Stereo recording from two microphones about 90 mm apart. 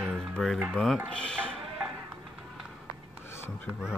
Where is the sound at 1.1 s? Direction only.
10° left (ahead or behind).